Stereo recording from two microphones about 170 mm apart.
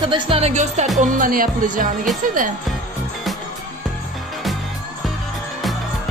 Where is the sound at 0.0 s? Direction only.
30° right (ahead or behind); by 1.9 s 55° right (ahead or behind).